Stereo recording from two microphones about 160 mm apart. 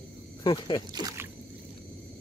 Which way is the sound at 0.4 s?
30° left (ahead or behind).